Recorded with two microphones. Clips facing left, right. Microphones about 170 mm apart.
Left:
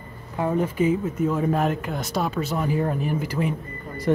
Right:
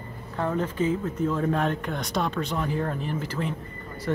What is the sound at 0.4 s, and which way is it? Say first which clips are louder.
Speech: left 4 dB; 10° left (ahead or behind).